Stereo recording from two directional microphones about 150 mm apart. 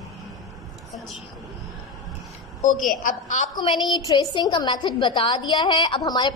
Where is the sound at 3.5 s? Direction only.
30° left (ahead or behind).